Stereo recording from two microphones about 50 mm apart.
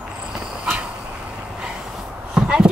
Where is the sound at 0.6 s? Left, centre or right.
Right.